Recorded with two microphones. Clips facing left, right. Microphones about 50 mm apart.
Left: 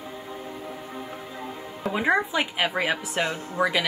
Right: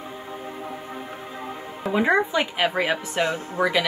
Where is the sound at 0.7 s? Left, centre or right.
Right.